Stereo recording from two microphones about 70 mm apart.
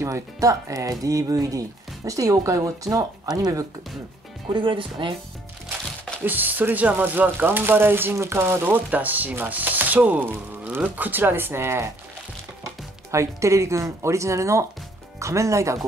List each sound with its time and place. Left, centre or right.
0.0 s speech: right
6.2 s speech: right
13.1 s speech: right